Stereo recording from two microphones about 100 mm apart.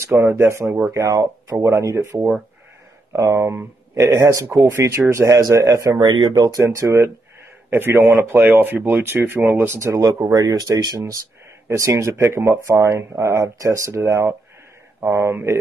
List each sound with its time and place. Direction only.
0.0 s speech: 25° right (ahead or behind)
2.1 s speech: 5° right (ahead or behind)
3.1 s speech: 35° right (ahead or behind)
5.9 s speech: 45° right (ahead or behind)
6.3 s speech: 35° right (ahead or behind)